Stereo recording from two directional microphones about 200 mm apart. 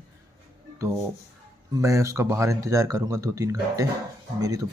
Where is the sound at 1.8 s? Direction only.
15° right (ahead or behind).